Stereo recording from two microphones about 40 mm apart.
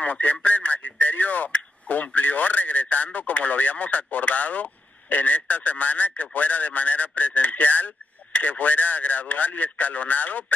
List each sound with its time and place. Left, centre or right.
0.0 s a man's voice: left